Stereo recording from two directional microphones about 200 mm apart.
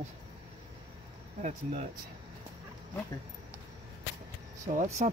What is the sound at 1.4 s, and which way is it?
Speech, 35° right (ahead or behind).